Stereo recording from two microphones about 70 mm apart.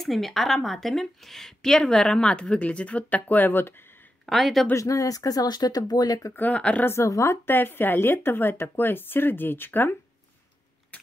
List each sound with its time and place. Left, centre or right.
0.0 s a woman's voice: centre; by 3.7 s left
4.3 s speech: centre
4.7 s speech: left
6.3 s speech: left
6.9 s speech: left
7.4 s speech: left